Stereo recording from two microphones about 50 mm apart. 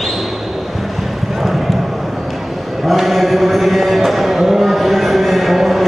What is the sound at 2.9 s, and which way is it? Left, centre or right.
Chant, centre.